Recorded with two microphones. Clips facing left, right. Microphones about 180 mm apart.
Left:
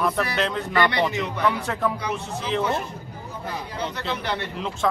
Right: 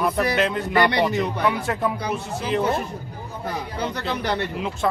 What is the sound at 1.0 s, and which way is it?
Speech, 40° right (ahead or behind).